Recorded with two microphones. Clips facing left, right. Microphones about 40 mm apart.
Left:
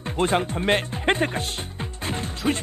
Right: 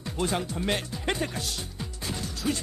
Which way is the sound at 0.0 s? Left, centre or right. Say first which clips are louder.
Left 7 dB; left.